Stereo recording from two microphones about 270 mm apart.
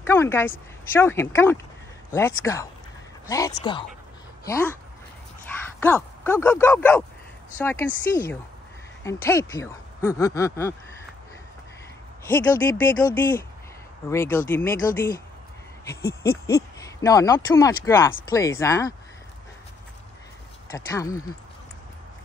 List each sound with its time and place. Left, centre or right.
0.0 s speech: centre
5.8 s speech: centre
12.3 s speech: centre
16.0 s owl: left
16.8 s speech: centre
20.7 s speech: centre